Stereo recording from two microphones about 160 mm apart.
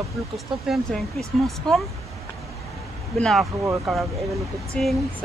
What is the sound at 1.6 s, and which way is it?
Speech, 5° left (ahead or behind).